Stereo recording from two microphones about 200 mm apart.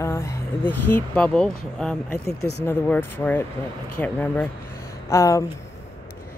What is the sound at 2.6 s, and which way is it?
Speech, 10° left (ahead or behind).